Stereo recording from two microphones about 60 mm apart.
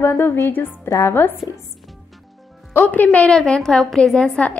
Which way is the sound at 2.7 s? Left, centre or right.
Left.